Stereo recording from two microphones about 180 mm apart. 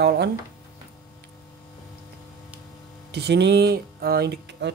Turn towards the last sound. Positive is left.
turn(degrees=-70)  # may be behind; listen again after turning